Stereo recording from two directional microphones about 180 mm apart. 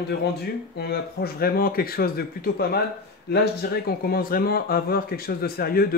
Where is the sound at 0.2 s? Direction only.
60° left (ahead or behind).